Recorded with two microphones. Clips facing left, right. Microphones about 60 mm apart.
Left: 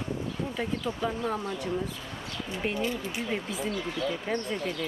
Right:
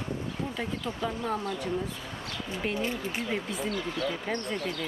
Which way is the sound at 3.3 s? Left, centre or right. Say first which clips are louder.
Left 1 dB; centre.